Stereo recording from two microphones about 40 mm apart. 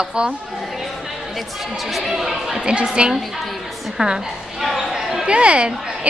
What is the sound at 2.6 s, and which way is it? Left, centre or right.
A woman's voice, right.